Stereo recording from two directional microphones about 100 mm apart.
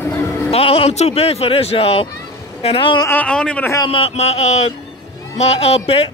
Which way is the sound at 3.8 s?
70° left (ahead or behind).